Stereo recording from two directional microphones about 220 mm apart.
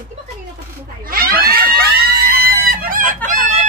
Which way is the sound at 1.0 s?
40° right (ahead or behind).